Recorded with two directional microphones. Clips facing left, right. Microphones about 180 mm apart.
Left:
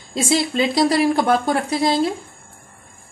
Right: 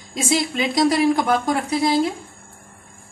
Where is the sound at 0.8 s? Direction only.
30° left (ahead or behind).